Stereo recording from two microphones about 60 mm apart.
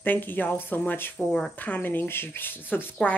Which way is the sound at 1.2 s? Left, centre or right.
Centre.